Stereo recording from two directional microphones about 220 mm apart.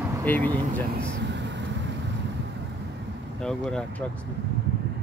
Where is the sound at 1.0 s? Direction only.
55° right (ahead or behind).